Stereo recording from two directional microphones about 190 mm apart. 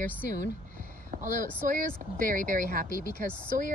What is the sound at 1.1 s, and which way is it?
Speech, 40° right (ahead or behind).